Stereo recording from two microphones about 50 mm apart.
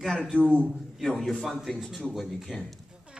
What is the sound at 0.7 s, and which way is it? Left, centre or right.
A man's voice, centre.